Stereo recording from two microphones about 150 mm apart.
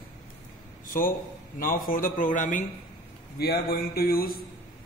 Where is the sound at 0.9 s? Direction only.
65° left (ahead or behind).